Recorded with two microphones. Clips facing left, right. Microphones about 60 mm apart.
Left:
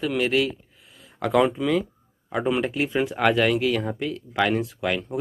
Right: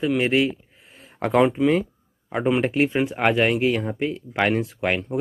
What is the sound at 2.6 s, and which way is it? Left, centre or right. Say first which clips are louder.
Speech: right 5 dB; right.